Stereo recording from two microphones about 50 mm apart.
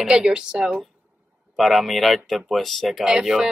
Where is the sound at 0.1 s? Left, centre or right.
Centre.